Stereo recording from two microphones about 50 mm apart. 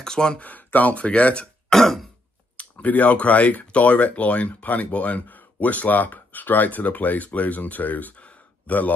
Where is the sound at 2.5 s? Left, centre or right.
Left.